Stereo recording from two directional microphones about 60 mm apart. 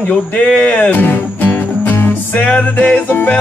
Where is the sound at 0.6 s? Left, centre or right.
Left.